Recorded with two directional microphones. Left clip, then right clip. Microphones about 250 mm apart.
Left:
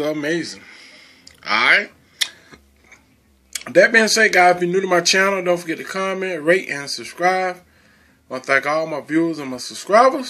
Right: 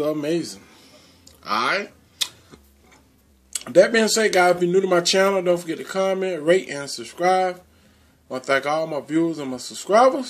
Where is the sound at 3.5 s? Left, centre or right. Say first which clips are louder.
Left 3 dB; centre.